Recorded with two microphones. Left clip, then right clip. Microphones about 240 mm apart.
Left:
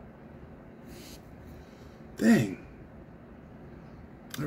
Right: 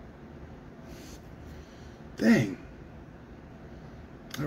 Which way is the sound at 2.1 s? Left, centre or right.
Centre.